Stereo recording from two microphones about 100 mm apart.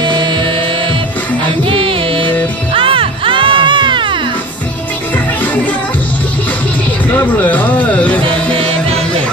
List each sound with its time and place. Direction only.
0.0 s music: 50° right (ahead or behind)
1.7 s music: 65° right (ahead or behind)
7.1 s music: 20° left (ahead or behind)